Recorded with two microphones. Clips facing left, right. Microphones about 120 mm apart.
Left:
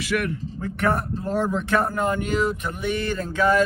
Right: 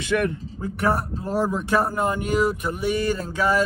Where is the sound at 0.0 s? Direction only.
25° right (ahead or behind).